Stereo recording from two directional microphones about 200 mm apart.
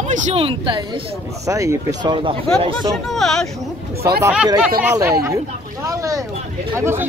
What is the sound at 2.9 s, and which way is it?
Speech, centre (ahead or behind).